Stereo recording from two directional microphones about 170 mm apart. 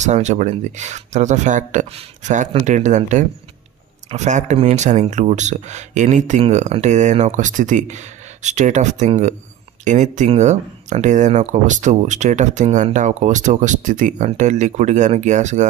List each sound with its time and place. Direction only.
0.0 s speech: 45° right (ahead or behind)